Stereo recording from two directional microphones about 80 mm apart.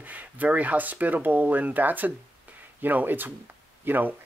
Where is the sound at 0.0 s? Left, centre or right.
Right.